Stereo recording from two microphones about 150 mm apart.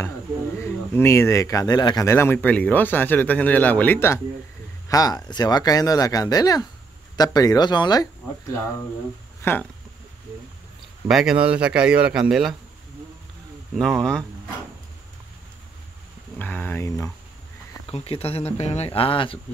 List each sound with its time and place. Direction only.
0.6 s speech: 20° left (ahead or behind)
9.4 s speech: 15° left (ahead or behind)
11.1 s speech: centre (ahead or behind)
13.7 s speech: 5° left (ahead or behind)
16.3 s speech: 10° left (ahead or behind)
17.8 s speech: 40° left (ahead or behind)